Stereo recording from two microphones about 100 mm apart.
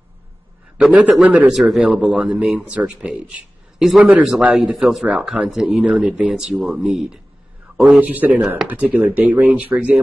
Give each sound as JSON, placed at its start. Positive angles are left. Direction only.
{"t": 0.7, "sound": "speech", "side_deg": -15}
{"t": 4.6, "sound": "speech", "side_deg": -5}